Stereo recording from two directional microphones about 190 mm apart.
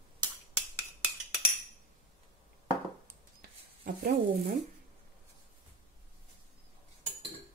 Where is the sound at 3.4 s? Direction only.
50° right (ahead or behind).